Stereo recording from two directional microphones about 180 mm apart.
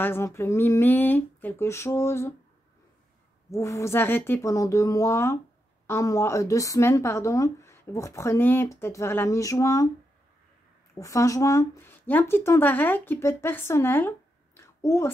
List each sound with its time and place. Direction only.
0.0 s speech: 15° left (ahead or behind)
3.5 s speech: 15° left (ahead or behind)
11.0 s speech: 15° left (ahead or behind)
14.6 s a sound: 15° left (ahead or behind)